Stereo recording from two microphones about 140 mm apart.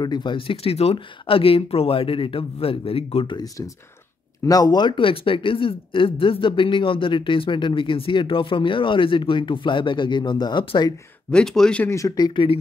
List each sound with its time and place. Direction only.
0.0 s speech: 30° left (ahead or behind)
4.5 s speech: 25° left (ahead or behind)
11.2 s speech: 5° left (ahead or behind)
11.9 s speech: 25° left (ahead or behind)